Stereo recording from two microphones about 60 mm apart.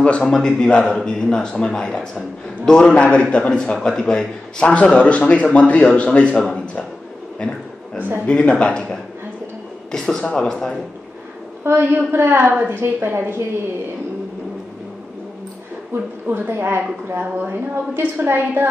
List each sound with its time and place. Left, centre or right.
0.2 s a man's voice: centre
7.3 s a sound: centre
8.3 s a man's voice: centre
11.6 s a woman's voice: right
15.9 s a woman's voice: right